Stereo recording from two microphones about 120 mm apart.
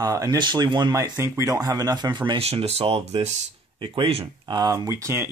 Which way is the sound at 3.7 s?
45° right (ahead or behind).